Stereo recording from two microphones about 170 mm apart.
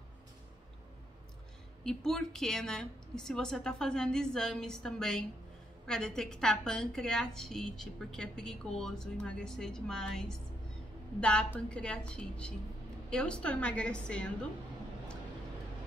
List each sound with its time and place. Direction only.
1.9 s a woman's voice: 5° left (ahead or behind)